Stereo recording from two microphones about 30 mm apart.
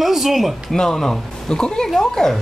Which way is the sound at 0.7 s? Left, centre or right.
Centre.